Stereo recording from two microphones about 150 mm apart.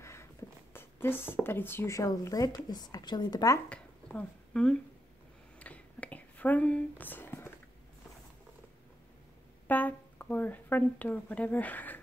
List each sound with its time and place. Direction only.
0.0 s speech: 20° left (ahead or behind)
3.6 s dishes: 10° left (ahead or behind)
5.6 s a sound: 10° left (ahead or behind)
9.7 s speech: 10° left (ahead or behind)